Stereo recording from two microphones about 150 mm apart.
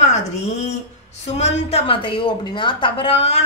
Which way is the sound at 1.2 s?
45° left (ahead or behind).